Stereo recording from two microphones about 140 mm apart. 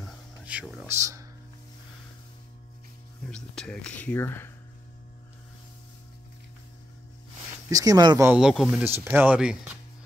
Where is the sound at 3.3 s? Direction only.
5° left (ahead or behind).